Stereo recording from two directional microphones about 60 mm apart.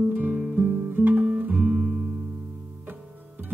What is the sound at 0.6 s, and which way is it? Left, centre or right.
Guitar, right.